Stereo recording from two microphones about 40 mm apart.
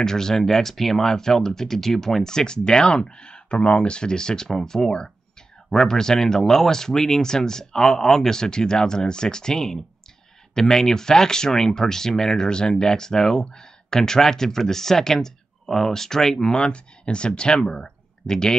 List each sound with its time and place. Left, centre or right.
0.0 s speech: centre
16.5 s speech: left